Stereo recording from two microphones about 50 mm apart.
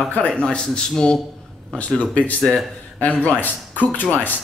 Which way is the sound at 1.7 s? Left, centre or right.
Left.